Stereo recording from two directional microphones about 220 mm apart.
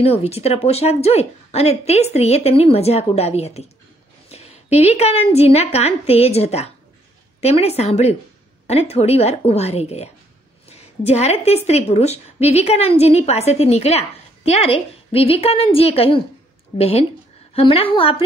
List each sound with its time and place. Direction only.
0.0 s a woman's voice: 25° left (ahead or behind)